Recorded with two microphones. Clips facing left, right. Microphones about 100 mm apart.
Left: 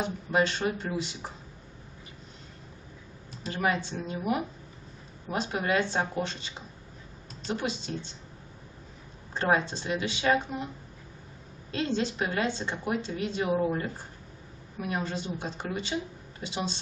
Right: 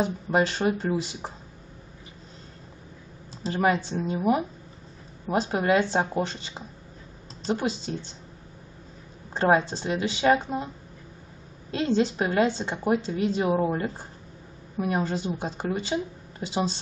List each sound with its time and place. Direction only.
0.0 s a woman's voice: 35° right (ahead or behind)
3.4 s a woman's voice: 35° right (ahead or behind)
9.3 s a woman's voice: 35° right (ahead or behind)
11.8 s a woman's voice: 35° right (ahead or behind)